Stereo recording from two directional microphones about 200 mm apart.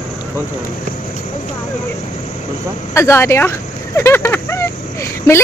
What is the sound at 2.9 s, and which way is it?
Speech, 15° left (ahead or behind).